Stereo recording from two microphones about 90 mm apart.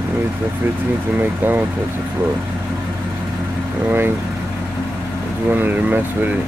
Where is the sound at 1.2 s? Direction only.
20° right (ahead or behind).